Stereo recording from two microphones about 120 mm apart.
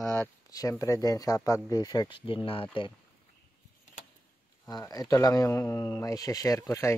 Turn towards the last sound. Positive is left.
turn(degrees=25)  # may be behind; listen again after turning